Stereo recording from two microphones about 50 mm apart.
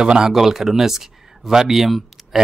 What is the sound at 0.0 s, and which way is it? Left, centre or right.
Speech, centre.